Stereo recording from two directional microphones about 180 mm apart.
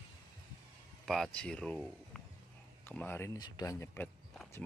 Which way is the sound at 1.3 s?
5° left (ahead or behind).